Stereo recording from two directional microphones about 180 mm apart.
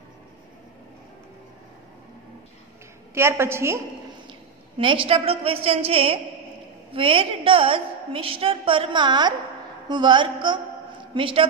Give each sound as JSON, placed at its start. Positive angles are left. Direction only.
{"t": 3.2, "sound": "a woman's voice", "side_deg": -15}
{"t": 4.3, "sound": "a woman's voice", "side_deg": -30}